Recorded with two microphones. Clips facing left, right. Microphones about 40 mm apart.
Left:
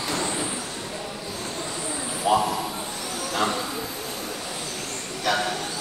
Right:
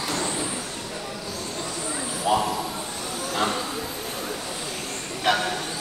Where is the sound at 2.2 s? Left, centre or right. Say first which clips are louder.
Left 1 dB; centre.